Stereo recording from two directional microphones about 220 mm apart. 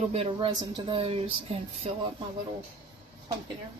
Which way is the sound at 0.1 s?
30° right (ahead or behind).